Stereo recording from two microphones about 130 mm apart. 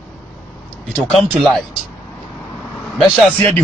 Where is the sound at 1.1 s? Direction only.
Centre (ahead or behind).